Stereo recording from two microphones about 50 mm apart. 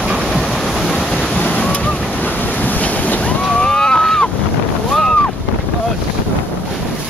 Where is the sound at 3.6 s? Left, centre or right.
Centre.